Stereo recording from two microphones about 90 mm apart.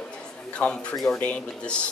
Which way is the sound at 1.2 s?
15° left (ahead or behind).